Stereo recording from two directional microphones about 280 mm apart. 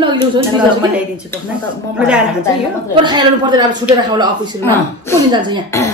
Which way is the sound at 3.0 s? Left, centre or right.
Centre.